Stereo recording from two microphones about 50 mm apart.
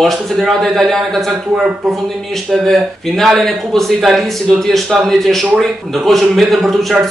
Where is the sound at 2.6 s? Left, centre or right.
Centre.